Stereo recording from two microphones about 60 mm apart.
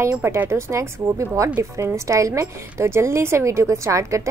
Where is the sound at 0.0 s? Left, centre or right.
Right.